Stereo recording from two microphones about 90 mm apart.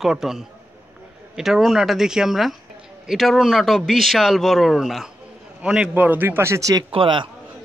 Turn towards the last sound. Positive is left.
turn(degrees=-70)  # may be behind; listen again after turning